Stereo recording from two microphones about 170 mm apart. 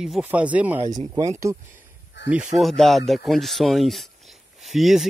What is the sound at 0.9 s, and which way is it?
Speech, 20° right (ahead or behind).